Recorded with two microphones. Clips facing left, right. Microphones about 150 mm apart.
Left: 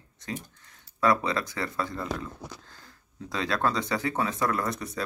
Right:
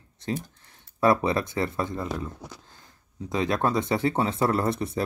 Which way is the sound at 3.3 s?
20° right (ahead or behind).